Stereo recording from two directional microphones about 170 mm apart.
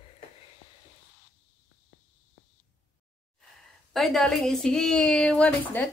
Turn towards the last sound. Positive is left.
turn(degrees=10)  # may be behind; listen again after turning